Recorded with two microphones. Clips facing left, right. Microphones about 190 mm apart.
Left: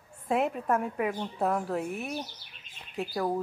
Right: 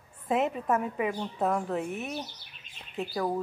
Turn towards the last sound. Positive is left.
turn(degrees=0)  # may be behind; listen again after turning